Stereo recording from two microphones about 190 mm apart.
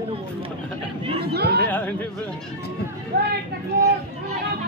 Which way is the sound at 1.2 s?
60° right (ahead or behind).